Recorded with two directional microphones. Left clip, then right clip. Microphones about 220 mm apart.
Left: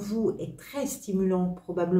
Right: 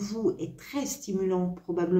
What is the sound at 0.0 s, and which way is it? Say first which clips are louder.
Speech: even; 30° right (ahead or behind).